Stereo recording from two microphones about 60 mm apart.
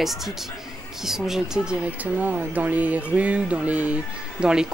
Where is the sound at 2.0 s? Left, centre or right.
Right.